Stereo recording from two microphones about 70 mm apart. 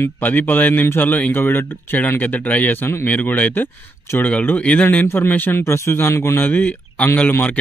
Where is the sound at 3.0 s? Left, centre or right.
Left.